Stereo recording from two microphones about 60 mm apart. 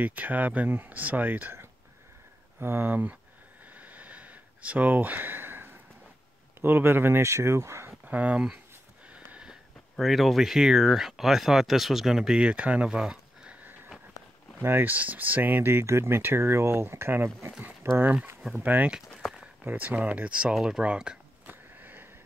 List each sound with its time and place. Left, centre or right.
0.0 s speech: right
3.7 s a sound: right
6.6 s speech: right
7.2 s speech: right
8.0 s speech: right
9.1 s a sound: centre
9.9 s speech: centre
14.6 s speech: right
15.8 s speech: right
17.5 s speech: right
21.5 s sniff: right